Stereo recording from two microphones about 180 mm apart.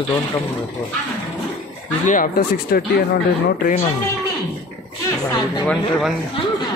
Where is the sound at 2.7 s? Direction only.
55° left (ahead or behind).